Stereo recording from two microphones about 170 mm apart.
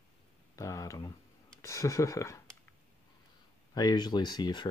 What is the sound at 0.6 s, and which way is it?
Speech, 20° left (ahead or behind).